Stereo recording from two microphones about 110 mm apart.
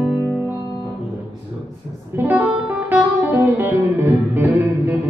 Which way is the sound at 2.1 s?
20° right (ahead or behind).